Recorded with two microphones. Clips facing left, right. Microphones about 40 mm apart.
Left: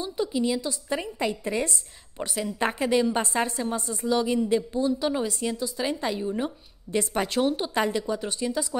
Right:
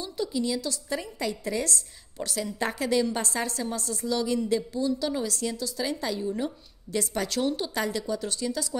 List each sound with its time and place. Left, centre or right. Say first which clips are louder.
0.0 s a woman's voice: left 3 dB; left